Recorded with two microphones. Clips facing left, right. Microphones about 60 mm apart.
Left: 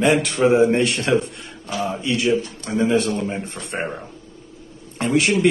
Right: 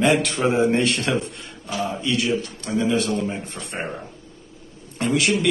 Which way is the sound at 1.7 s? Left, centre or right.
Left.